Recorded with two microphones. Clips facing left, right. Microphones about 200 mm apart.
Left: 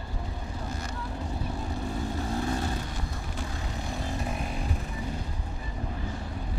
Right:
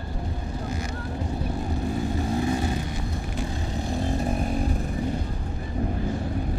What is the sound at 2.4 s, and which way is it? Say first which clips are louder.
Vehicle: right 5 dB; 15° right (ahead or behind).